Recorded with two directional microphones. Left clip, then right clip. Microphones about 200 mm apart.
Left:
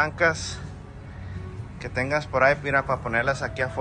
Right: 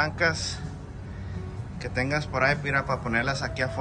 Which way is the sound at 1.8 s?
10° right (ahead or behind).